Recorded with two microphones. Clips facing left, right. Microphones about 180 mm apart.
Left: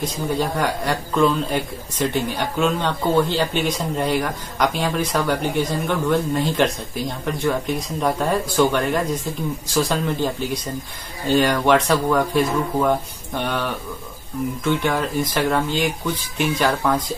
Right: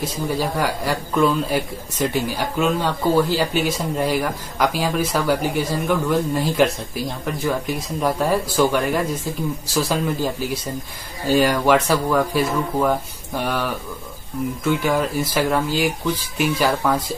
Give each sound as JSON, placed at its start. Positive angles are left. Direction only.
{"t": 0.0, "sound": "a man's voice", "side_deg": -5}
{"t": 9.8, "sound": "a man's voice", "side_deg": -5}